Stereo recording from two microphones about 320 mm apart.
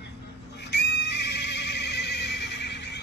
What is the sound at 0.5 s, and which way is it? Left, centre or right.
Neigh, left.